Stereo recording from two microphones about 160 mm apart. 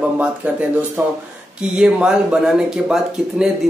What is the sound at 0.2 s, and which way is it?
Speech, 10° right (ahead or behind).